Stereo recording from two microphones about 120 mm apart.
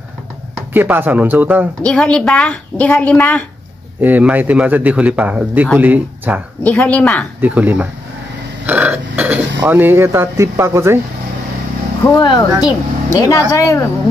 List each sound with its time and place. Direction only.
0.7 s speech: 15° right (ahead or behind)
1.8 s a woman's voice: 5° left (ahead or behind)
4.0 s speech: 15° right (ahead or behind)
6.8 s a woman's voice: 10° left (ahead or behind)
7.3 s speech: 15° right (ahead or behind)
8.6 s burping: 15° right (ahead or behind)
9.7 s speech: 15° right (ahead or behind)
12.0 s speech: 25° left (ahead or behind)